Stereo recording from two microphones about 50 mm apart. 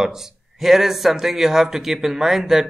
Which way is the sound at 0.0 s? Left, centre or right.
Centre.